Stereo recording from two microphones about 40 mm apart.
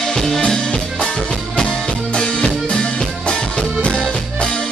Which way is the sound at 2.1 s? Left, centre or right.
Left.